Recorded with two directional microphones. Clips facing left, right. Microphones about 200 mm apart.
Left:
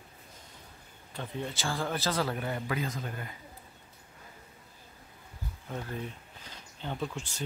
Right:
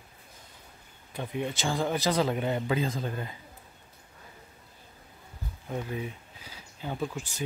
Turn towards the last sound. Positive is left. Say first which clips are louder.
# right 2 dB
turn(degrees=-5)  # may be behind; listen again after turning